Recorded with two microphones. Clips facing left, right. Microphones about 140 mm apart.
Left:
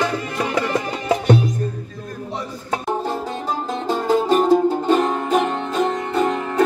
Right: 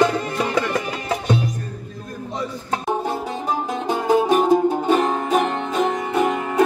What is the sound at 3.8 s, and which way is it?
Music, 15° right (ahead or behind).